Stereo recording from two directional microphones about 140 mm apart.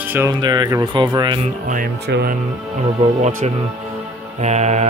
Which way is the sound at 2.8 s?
50° right (ahead or behind).